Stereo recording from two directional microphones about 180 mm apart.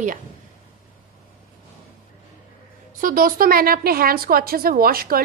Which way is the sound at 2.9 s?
50° right (ahead or behind).